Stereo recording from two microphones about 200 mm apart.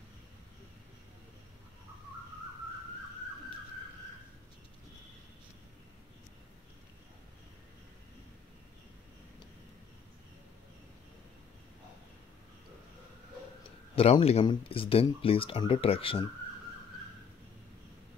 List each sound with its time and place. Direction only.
13.9 s speech: 30° left (ahead or behind)